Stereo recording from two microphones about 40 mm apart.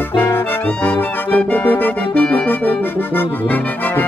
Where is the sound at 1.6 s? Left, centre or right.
Left.